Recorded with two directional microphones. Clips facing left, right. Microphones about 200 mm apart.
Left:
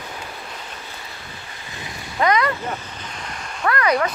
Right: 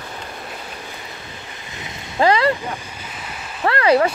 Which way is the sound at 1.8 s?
25° right (ahead or behind).